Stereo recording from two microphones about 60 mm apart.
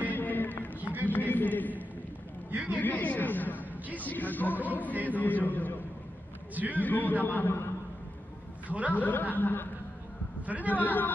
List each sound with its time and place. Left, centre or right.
0.1 s run: left
0.7 s run: right
1.0 s a sound: left
4.6 s a man's voice: left
5.0 s a sound: left
6.7 s a man's voice: left
8.6 s a man's voice: right
8.9 s a man's voice: left
10.4 s a sound: right
10.7 s a man's voice: left